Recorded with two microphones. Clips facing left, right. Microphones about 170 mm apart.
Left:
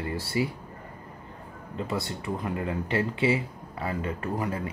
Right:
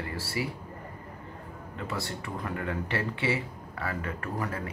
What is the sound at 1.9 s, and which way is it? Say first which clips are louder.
Speech: left 4 dB; 25° left (ahead or behind).